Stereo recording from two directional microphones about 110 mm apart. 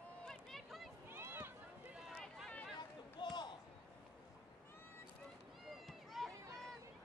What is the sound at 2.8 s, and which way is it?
Run, 40° left (ahead or behind).